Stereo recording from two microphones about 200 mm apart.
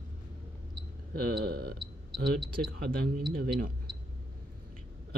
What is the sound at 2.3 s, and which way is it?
Speech, centre (ahead or behind).